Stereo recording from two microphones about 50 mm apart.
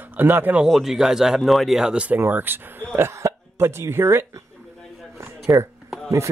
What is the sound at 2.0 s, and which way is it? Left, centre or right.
Speech, right.